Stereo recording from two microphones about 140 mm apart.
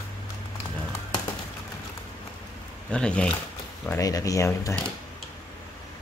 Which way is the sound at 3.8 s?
20° left (ahead or behind).